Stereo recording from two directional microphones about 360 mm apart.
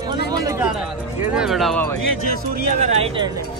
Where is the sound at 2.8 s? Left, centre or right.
Centre.